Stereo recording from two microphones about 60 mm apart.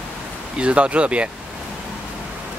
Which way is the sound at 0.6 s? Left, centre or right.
Centre.